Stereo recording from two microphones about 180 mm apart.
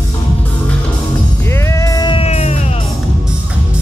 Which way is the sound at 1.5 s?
15° left (ahead or behind).